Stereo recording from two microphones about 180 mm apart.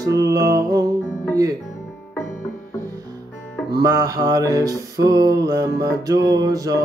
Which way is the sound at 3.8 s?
15° right (ahead or behind).